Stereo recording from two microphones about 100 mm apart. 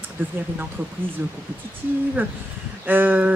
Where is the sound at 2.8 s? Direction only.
20° right (ahead or behind).